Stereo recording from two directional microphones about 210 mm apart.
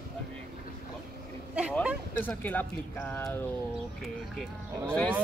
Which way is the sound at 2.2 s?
10° left (ahead or behind).